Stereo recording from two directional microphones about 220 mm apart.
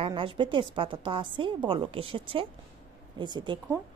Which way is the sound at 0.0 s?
25° right (ahead or behind).